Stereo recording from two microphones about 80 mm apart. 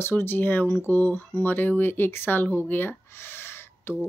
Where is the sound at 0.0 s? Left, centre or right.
Left.